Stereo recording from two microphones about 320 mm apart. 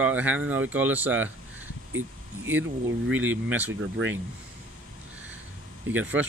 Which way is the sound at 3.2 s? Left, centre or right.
Centre.